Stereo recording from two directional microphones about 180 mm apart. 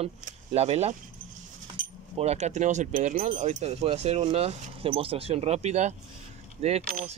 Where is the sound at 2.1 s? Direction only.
35° right (ahead or behind).